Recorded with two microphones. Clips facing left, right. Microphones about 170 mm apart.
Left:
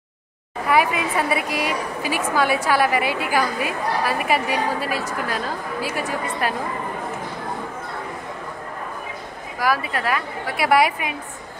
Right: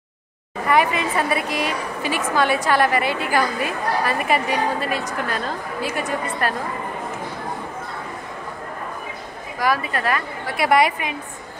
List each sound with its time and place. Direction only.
0.7 s a woman's voice: 10° left (ahead or behind)
9.6 s a woman's voice: 5° left (ahead or behind)